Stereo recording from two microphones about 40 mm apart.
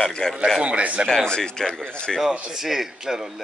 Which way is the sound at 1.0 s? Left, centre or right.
Centre.